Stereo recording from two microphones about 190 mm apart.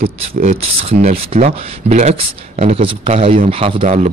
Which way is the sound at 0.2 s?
35° right (ahead or behind).